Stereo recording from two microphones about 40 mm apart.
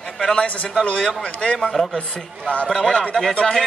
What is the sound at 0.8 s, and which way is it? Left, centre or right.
Speech, left.